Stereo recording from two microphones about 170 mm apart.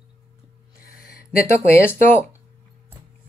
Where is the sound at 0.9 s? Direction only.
60° left (ahead or behind).